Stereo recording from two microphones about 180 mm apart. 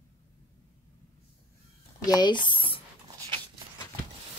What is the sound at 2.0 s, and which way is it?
Speech, 25° left (ahead or behind).